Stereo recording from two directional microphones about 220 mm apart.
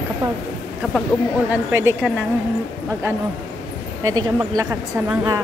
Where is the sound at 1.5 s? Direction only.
10° right (ahead or behind).